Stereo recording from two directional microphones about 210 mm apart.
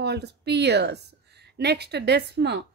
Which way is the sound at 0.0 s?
50° right (ahead or behind).